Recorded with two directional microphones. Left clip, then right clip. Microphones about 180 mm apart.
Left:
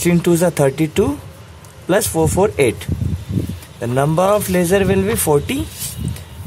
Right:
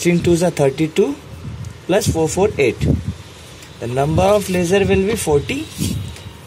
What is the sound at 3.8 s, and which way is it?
Speech, 35° left (ahead or behind).